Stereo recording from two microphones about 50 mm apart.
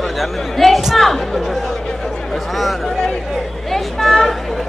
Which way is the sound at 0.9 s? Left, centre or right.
Centre.